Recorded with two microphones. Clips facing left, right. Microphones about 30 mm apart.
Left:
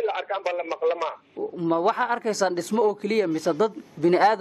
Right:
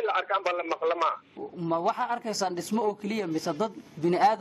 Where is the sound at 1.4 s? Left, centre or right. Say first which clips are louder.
Left 8 dB; left.